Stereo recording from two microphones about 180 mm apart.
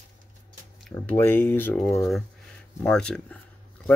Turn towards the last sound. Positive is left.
turn(degrees=5)  # may be behind; listen again after turning